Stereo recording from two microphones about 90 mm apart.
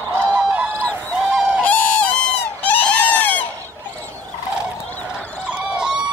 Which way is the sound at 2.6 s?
20° left (ahead or behind).